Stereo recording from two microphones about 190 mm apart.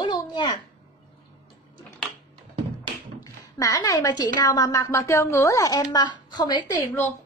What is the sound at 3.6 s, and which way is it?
A woman's voice, 20° left (ahead or behind).